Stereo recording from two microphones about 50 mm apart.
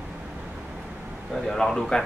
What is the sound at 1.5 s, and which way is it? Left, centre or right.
Speech, centre.